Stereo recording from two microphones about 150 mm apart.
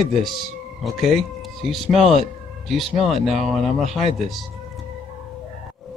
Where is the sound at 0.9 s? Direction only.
Centre (ahead or behind).